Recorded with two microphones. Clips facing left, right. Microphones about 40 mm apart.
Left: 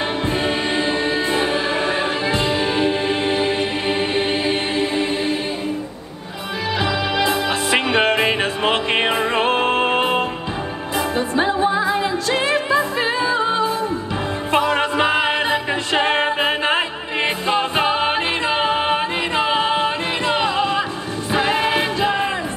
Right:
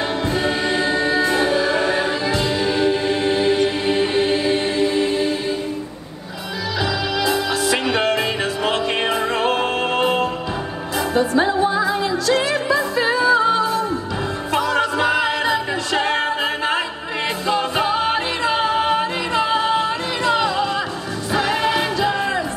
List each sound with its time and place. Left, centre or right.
0.3 s music: left
6.8 s music: left